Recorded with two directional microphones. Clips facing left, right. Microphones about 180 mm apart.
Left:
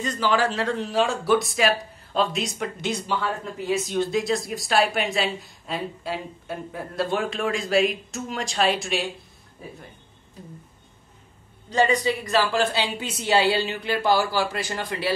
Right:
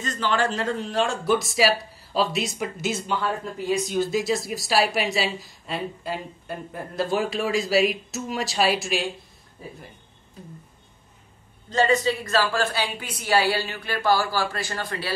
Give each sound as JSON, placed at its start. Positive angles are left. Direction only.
{"t": 0.0, "sound": "speech", "side_deg": 10}
{"t": 11.7, "sound": "a woman's voice", "side_deg": 15}